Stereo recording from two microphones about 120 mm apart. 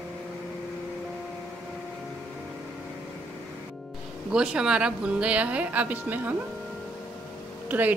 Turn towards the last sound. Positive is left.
turn(degrees=-15)  # may be behind; listen again after turning